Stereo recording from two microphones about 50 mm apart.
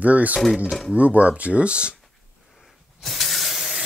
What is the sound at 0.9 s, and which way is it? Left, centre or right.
Speech, right.